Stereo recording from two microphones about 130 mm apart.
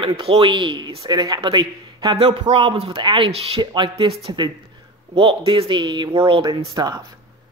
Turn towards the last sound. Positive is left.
turn(degrees=-30)  # may be behind; listen again after turning